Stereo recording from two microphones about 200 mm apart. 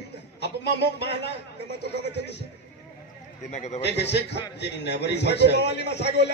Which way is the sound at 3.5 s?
35° left (ahead or behind).